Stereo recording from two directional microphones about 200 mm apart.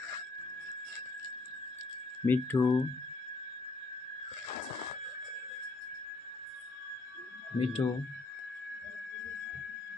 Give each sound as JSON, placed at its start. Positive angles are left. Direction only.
{"t": 2.2, "sound": "speech", "side_deg": 10}
{"t": 7.5, "sound": "speech", "side_deg": 30}